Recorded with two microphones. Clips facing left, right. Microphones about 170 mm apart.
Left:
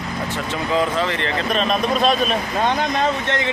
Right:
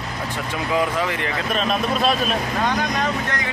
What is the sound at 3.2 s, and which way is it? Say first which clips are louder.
Speech: left 4 dB; 25° left (ahead or behind).